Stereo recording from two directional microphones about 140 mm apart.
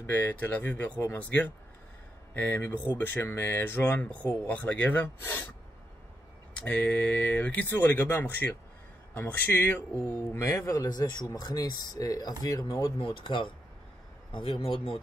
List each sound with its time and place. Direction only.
0.0 s speech: 15° left (ahead or behind)
6.5 s a man's voice: 10° left (ahead or behind); by 15.0 s 40° left (ahead or behind)